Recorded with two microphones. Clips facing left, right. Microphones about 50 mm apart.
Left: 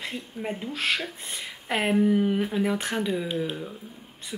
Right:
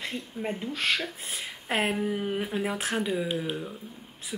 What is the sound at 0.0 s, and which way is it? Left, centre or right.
Speech, centre.